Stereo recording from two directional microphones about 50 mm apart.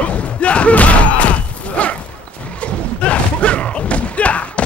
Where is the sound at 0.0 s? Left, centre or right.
Left.